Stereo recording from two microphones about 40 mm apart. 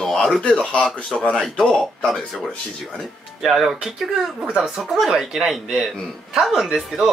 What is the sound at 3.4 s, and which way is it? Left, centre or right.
Speech, centre.